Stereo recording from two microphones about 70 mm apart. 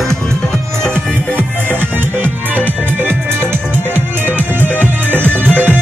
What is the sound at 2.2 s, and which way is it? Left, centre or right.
Music, right.